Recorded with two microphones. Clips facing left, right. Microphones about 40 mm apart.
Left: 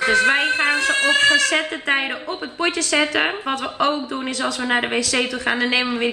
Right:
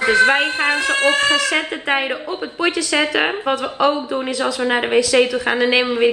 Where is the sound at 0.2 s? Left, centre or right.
Right.